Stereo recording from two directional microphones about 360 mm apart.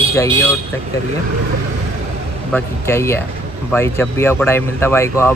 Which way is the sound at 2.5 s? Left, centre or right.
Centre.